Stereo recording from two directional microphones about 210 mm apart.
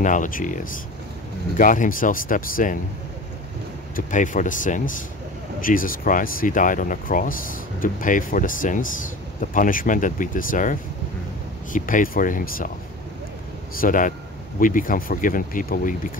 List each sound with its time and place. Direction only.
0.0 s speech: 35° left (ahead or behind)
1.6 s speech: 40° left (ahead or behind)
3.9 s speech: 40° left (ahead or behind)
13.7 s speech: 40° left (ahead or behind)